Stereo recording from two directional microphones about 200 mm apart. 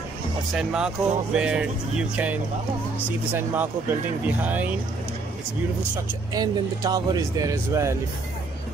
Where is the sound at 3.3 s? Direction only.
10° right (ahead or behind).